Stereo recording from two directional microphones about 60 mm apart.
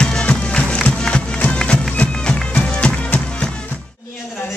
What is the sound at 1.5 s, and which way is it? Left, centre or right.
Bagpipes, centre.